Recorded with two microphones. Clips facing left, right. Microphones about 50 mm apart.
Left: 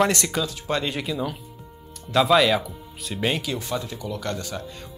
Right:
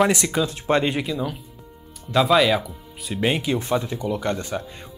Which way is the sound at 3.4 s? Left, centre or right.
Right.